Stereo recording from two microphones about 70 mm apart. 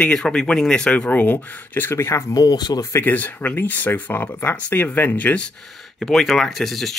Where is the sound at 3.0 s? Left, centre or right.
Left.